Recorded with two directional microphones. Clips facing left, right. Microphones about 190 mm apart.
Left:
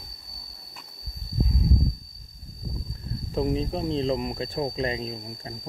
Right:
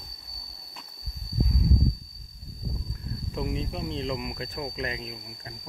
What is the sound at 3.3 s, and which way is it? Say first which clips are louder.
Speech: left 7 dB; 35° left (ahead or behind).